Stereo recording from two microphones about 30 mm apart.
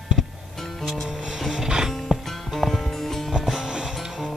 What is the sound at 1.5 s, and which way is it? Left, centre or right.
Music, right.